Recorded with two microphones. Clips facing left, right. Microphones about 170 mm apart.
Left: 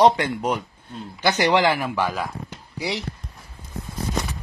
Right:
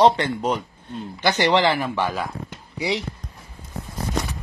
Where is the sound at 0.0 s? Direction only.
10° left (ahead or behind).